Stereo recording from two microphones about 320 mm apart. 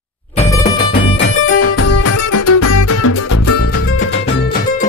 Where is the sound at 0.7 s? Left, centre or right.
Centre.